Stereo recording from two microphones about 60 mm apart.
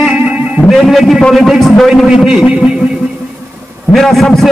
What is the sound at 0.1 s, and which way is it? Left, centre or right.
Music, centre.